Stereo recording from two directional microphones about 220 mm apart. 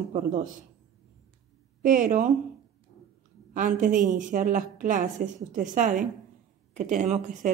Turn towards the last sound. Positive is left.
turn(degrees=-35)  # may be behind; listen again after turning